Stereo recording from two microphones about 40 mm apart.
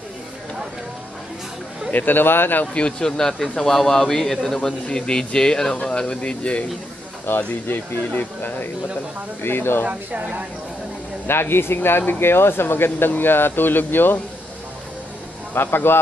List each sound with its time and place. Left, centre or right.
1.9 s speech: left
2.6 s speech: left
3.0 s a man's voice: centre
4.6 s speech: centre
7.2 s speech: left
9.4 s speech: left
9.8 s speech: right
11.2 s speech: left
15.5 s speech: left